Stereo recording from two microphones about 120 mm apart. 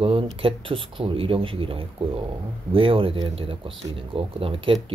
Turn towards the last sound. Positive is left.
turn(degrees=-50)  # may be behind; listen again after turning